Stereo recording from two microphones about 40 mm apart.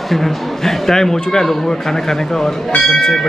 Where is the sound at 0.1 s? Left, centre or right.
Centre.